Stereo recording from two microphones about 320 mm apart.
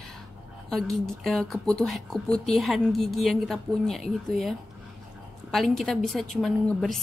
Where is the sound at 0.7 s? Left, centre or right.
Centre.